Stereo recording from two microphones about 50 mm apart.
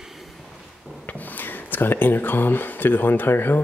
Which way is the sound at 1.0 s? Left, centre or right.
Left.